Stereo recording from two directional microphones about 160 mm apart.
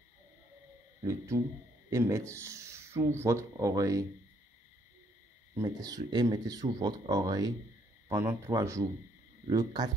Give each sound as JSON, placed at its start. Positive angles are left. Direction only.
{"t": 1.0, "sound": "speech", "side_deg": -20}
{"t": 5.5, "sound": "speech", "side_deg": -20}